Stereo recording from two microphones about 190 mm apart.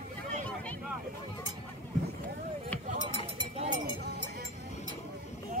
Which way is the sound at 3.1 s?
25° right (ahead or behind).